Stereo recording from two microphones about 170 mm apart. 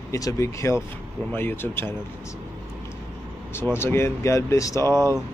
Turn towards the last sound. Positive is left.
turn(degrees=15)  # may be behind; listen again after turning